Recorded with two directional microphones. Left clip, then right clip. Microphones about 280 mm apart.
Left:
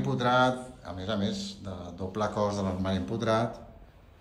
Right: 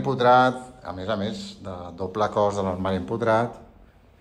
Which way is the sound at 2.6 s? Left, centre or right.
Right.